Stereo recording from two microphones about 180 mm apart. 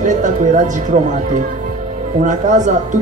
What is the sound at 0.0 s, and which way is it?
Speech, 45° right (ahead or behind).